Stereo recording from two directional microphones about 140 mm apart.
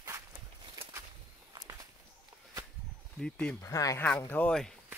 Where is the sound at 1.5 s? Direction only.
25° right (ahead or behind).